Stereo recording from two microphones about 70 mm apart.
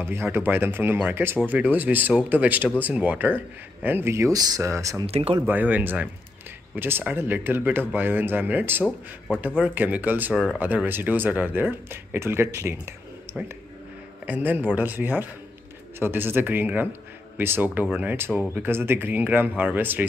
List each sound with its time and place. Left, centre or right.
0.0 s speech: right
4.1 s speech: right
4.4 s speech: right
4.6 s speech: right
5.5 s speech: right
14.2 s speech: right